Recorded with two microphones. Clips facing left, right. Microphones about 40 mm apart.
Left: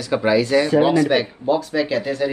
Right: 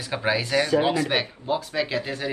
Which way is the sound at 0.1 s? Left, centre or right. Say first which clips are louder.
Left 7 dB; centre.